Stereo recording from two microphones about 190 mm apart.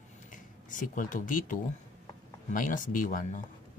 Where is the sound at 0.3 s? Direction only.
45° left (ahead or behind).